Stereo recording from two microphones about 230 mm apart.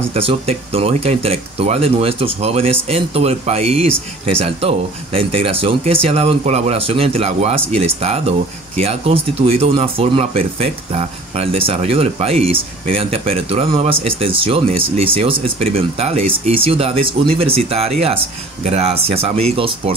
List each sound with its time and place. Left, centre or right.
0.1 s speech: right